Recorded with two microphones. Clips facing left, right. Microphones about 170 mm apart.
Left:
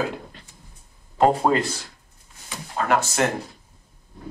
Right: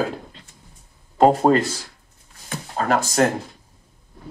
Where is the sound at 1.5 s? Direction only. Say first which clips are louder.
Right 4 dB; 50° right (ahead or behind).